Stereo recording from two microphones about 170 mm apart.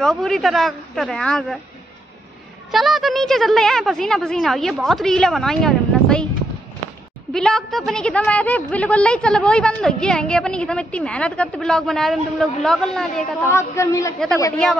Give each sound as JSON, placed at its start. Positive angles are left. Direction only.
{"t": 0.0, "sound": "a woman's voice", "side_deg": 0}
{"t": 2.7, "sound": "a woman's voice", "side_deg": 0}
{"t": 7.3, "sound": "a woman's voice", "side_deg": 5}
{"t": 13.5, "sound": "a man's voice", "side_deg": 15}